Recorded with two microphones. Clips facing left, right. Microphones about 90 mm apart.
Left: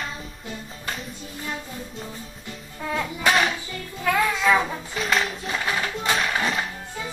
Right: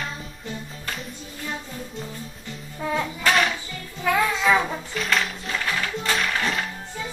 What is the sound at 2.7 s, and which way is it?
Music, 5° right (ahead or behind).